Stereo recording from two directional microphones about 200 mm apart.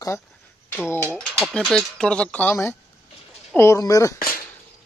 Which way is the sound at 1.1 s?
Centre (ahead or behind).